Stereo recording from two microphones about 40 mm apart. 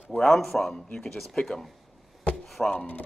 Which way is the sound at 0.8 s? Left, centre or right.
Centre.